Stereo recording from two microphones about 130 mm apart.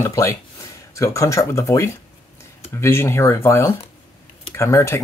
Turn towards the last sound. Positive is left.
turn(degrees=20)  # may be behind; listen again after turning